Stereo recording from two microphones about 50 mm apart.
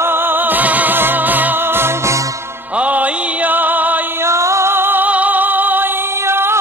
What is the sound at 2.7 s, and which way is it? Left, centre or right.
Music, right.